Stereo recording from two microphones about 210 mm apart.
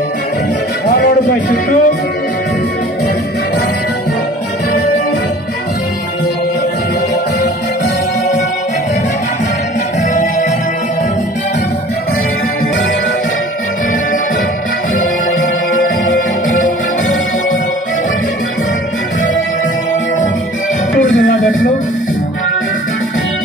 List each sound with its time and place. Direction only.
0.8 s music: 40° left (ahead or behind)
16.4 s music: 40° left (ahead or behind)